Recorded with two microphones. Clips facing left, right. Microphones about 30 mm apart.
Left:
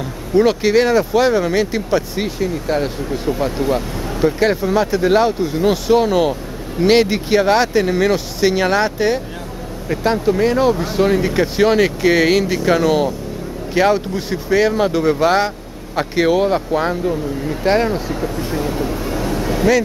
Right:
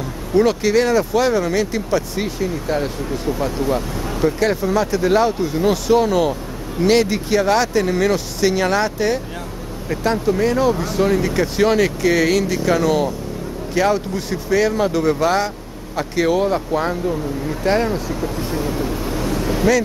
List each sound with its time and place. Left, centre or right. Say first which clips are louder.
0.4 s speech: left 2 dB; centre
18.9 s vehicle: left 1 dB; centre